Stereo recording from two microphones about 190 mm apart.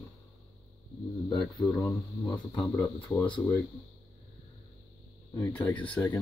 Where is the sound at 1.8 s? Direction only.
15° left (ahead or behind).